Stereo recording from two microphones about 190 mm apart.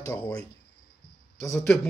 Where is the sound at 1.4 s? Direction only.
10° left (ahead or behind).